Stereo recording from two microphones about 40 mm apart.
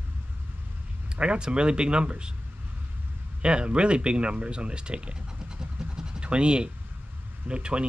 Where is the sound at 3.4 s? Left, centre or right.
Right.